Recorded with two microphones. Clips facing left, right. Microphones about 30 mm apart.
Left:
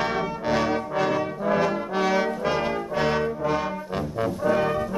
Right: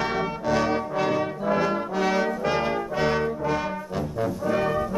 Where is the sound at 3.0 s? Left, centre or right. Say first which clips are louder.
Left 1 dB; centre.